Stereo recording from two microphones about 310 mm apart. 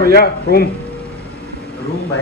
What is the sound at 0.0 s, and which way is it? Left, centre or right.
Speech, left.